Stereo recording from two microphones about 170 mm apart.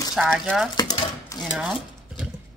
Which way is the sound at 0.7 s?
25° left (ahead or behind).